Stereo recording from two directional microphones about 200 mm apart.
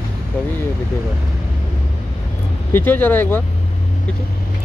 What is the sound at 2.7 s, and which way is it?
Speech, 10° left (ahead or behind).